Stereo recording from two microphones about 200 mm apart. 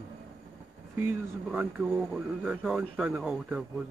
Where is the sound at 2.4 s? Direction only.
5° right (ahead or behind).